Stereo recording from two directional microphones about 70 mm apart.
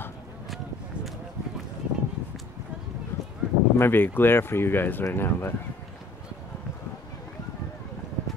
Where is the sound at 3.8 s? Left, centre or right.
Left.